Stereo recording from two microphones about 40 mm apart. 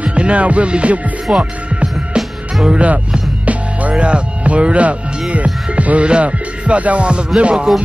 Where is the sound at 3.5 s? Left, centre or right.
Right.